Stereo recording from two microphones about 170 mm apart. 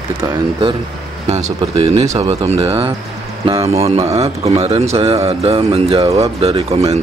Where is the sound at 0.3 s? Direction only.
30° right (ahead or behind).